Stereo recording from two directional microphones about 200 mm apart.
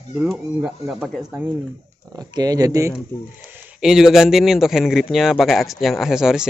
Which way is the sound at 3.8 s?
Centre (ahead or behind).